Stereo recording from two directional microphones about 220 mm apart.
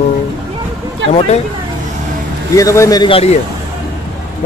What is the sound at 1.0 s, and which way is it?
Speech, 55° right (ahead or behind).